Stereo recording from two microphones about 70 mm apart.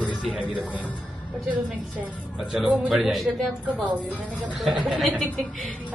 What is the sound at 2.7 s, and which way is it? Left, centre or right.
Speech, centre.